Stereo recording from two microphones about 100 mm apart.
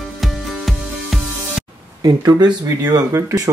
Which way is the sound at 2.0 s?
45° right (ahead or behind).